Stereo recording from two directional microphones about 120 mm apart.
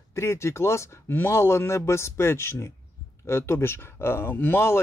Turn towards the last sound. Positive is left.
turn(degrees=15)  # may be behind; listen again after turning